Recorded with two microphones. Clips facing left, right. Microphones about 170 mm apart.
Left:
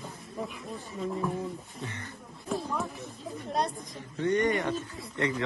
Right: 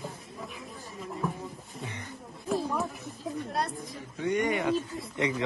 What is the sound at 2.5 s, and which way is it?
Speech, centre (ahead or behind).